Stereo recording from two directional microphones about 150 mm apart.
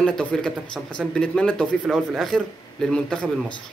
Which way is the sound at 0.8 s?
5° right (ahead or behind).